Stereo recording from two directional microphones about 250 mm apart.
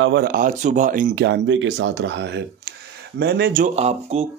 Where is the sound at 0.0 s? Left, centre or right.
Right.